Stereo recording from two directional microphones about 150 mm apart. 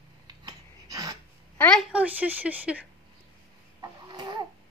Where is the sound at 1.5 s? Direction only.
10° left (ahead or behind).